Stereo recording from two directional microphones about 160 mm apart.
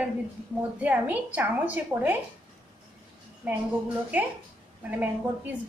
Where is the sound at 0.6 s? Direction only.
10° right (ahead or behind).